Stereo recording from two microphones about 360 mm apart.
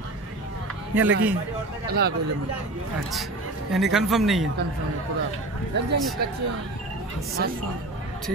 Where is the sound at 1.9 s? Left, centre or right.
Right.